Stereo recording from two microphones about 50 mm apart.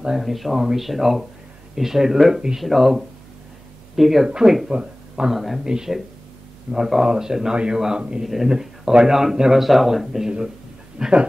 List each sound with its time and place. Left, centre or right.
0.2 s speech: centre
4.3 s speech: centre
5.3 s speech: centre
11.0 s speech: centre